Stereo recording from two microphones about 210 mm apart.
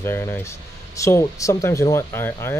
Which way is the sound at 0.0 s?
10° left (ahead or behind).